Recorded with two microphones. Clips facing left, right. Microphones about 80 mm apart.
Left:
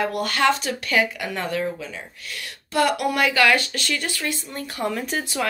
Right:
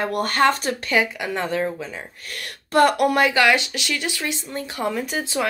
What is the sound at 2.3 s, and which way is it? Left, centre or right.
Speech, right.